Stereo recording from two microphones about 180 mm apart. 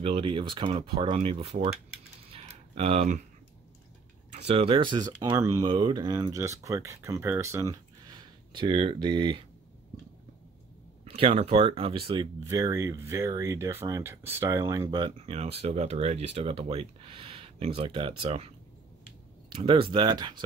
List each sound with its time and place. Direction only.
0.0 s speech: 30° right (ahead or behind)
2.3 s typing: 35° right (ahead or behind)
4.3 s speech: 35° right (ahead or behind)
11.1 s speech: 35° right (ahead or behind)
19.5 s speech: 30° right (ahead or behind)